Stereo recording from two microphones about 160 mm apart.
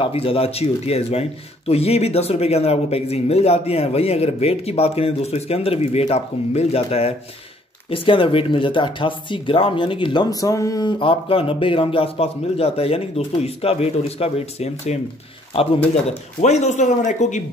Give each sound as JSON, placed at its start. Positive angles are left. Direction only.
{"t": 0.0, "sound": "speech", "side_deg": 35}